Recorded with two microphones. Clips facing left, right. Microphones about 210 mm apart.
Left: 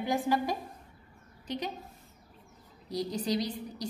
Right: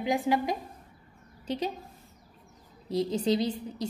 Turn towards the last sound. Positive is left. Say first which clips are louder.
# right 4 dB
turn(degrees=-25)  # may be behind; listen again after turning